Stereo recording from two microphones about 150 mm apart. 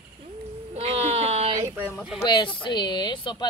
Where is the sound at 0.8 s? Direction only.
45° right (ahead or behind).